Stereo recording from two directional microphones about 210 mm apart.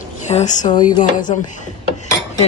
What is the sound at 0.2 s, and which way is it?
Speech, 35° left (ahead or behind).